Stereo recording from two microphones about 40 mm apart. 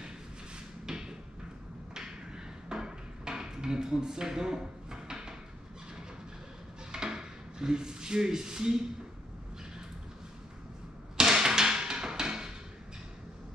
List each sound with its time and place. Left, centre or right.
0.8 s cupboard open or close: centre
2.0 s a sound: centre
6.9 s speech: centre
11.1 s music: centre